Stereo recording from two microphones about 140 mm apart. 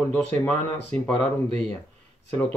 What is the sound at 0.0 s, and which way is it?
A man's voice, 10° left (ahead or behind).